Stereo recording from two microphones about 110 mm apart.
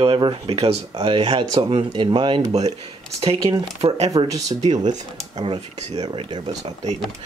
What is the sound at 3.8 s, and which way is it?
Speech, 75° right (ahead or behind).